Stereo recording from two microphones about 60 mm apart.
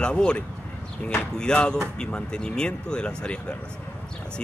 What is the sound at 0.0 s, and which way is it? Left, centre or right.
Speech, centre.